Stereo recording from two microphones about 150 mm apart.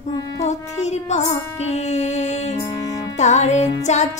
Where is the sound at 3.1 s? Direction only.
50° left (ahead or behind).